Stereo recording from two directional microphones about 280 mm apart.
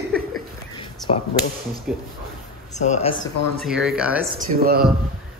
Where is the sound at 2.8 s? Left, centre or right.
Left.